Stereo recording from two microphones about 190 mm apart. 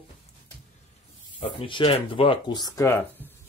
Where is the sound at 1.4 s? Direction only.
30° left (ahead or behind); by 3.3 s 10° left (ahead or behind).